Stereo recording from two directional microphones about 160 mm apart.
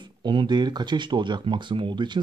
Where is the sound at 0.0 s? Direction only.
30° right (ahead or behind).